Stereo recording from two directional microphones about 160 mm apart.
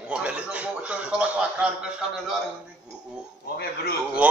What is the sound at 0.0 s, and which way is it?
A man's voice, 5° right (ahead or behind).